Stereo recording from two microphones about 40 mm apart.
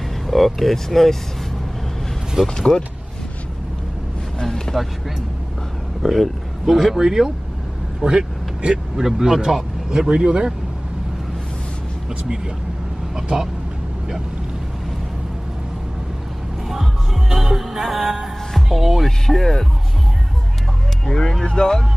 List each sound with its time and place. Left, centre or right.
0.6 s speech: centre
2.4 s speech: centre
4.4 s vehicle: centre
6.0 s speech: centre
8.0 s vehicle: right
8.9 s speech: centre
9.8 s speech: right
13.1 s speech: centre
16.6 s music: centre
18.7 s speech: centre
19.0 s speech: centre
21.0 s speech: centre